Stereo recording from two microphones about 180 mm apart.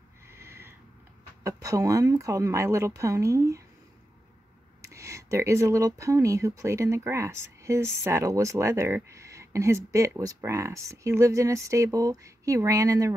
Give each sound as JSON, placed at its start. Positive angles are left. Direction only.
{"t": 0.3, "sound": "owl", "side_deg": -15}
{"t": 1.4, "sound": "speech", "side_deg": -20}
{"t": 4.8, "sound": "speech", "side_deg": -15}